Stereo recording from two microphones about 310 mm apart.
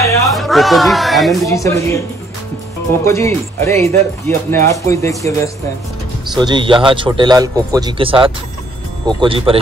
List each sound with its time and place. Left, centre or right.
0.0 s a woman's voice: centre
3.1 s speech: centre
6.3 s speech: centre